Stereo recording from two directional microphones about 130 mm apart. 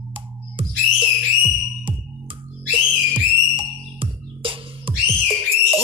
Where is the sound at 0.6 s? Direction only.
40° right (ahead or behind).